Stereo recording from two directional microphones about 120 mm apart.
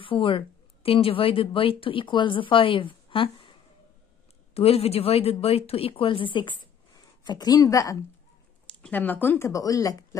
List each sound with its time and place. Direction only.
0.0 s a woman's voice: 45° left (ahead or behind)
4.6 s speech: 55° left (ahead or behind)
7.2 s a woman's voice: 35° left (ahead or behind)
8.6 s speech: 10° left (ahead or behind); by 10.0 s 30° left (ahead or behind)